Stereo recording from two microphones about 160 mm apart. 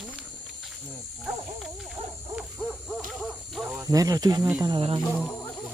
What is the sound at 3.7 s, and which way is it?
Speech, 20° right (ahead or behind).